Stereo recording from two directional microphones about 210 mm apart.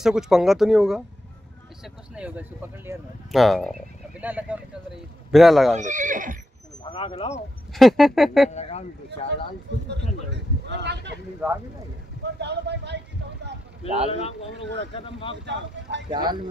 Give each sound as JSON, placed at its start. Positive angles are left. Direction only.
{"t": 0.0, "sound": "speech", "side_deg": 0}
{"t": 2.1, "sound": "speech", "side_deg": -5}
{"t": 5.8, "sound": "speech", "side_deg": -35}
{"t": 6.8, "sound": "speech", "side_deg": 25}
{"t": 7.7, "sound": "speech", "side_deg": 0}
{"t": 8.5, "sound": "speech", "side_deg": 30}
{"t": 10.3, "sound": "vehicle", "side_deg": -55}
{"t": 11.4, "sound": "speech", "side_deg": -5}
{"t": 12.4, "sound": "vehicle", "side_deg": -55}
{"t": 13.8, "sound": "speech", "side_deg": -30}
{"t": 14.1, "sound": "speech", "side_deg": 25}
{"t": 16.1, "sound": "speech", "side_deg": -20}